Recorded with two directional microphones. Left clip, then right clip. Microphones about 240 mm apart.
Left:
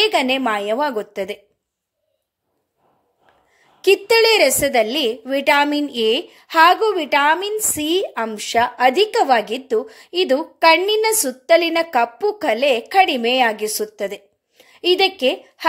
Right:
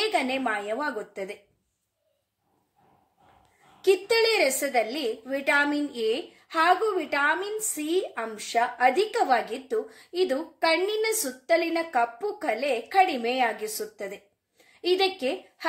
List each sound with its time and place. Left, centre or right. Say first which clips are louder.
0.0 s a woman's voice: left 9 dB; left
3.8 s a woman's voice: left 8 dB; left